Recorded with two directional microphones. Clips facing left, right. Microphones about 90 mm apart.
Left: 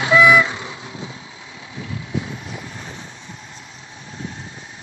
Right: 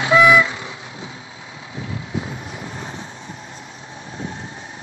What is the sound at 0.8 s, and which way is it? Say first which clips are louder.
Vehicle: left 1 dB; 30° right (ahead or behind).